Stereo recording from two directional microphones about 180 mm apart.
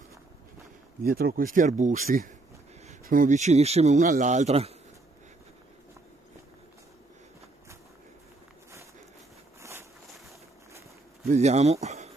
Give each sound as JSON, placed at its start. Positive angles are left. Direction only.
{"t": 1.0, "sound": "speech", "side_deg": -55}
{"t": 9.6, "sound": "a sound", "side_deg": -15}
{"t": 11.2, "sound": "speech", "side_deg": -40}